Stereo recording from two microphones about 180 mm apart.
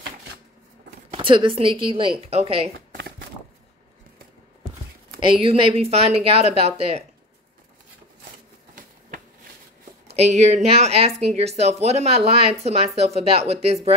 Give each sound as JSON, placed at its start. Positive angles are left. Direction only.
{"t": 1.1, "sound": "speech", "side_deg": -30}
{"t": 5.2, "sound": "speech", "side_deg": -30}
{"t": 8.7, "sound": "a sound", "side_deg": -50}
{"t": 10.0, "sound": "speech", "side_deg": -35}